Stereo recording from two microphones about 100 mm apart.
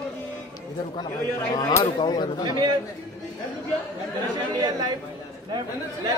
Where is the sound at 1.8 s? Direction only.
50° left (ahead or behind).